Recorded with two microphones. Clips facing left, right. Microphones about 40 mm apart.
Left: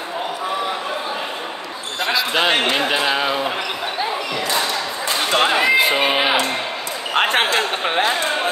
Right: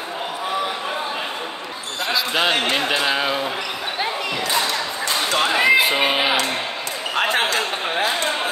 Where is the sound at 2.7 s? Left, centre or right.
Centre.